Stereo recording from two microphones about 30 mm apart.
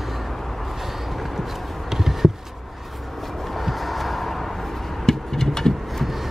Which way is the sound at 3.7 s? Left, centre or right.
Centre.